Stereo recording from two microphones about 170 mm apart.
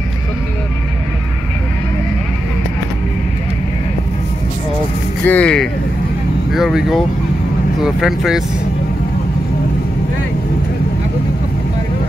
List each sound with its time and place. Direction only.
5.2 s speech: 10° left (ahead or behind)